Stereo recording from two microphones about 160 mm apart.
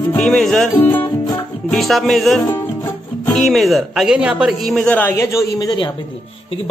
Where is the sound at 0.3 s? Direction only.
5° left (ahead or behind).